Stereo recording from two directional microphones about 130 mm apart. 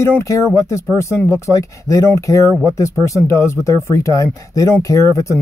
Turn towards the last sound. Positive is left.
turn(degrees=25)  # may be behind; listen again after turning